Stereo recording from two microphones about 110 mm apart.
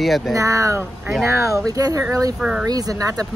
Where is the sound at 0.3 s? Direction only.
30° right (ahead or behind).